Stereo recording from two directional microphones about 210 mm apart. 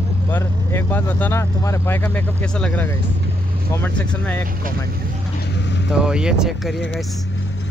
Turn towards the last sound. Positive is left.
turn(degrees=0)  # may be behind; listen again after turning